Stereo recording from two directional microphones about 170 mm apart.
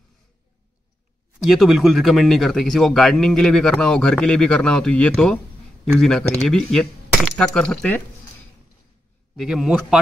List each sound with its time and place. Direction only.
1.4 s speech: centre (ahead or behind)
9.4 s speech: 5° right (ahead or behind)